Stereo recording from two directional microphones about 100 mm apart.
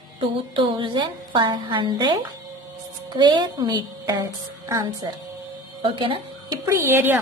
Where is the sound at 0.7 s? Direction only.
50° right (ahead or behind).